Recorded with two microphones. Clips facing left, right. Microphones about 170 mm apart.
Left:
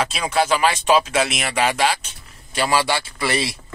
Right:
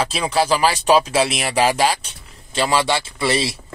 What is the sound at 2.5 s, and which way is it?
Speech, 25° right (ahead or behind).